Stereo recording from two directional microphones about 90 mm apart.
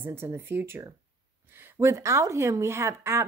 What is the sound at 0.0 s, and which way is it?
A woman's voice, 25° right (ahead or behind).